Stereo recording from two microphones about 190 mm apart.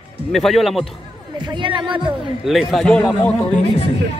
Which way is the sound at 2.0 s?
Centre (ahead or behind).